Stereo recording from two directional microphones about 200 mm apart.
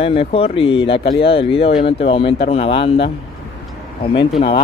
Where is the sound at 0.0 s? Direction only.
30° left (ahead or behind).